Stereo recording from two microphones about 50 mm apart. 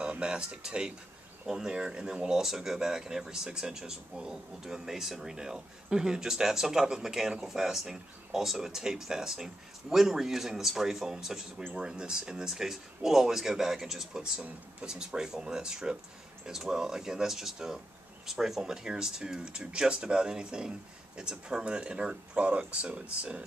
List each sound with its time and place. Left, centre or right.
0.0 s speech: right